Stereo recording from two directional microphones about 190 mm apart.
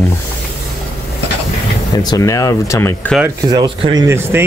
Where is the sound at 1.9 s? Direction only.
20° left (ahead or behind).